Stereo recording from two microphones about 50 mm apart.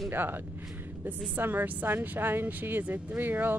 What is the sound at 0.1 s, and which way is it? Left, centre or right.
A woman's voice, right.